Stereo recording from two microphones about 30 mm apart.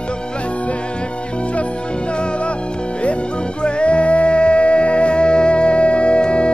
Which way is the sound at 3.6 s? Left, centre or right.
Left.